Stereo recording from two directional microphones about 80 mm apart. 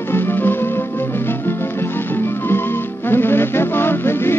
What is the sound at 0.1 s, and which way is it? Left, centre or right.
Music, left.